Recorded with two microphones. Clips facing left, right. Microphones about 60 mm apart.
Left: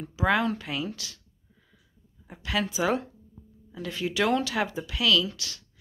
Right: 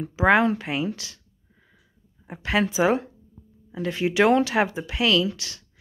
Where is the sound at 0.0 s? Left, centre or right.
Right.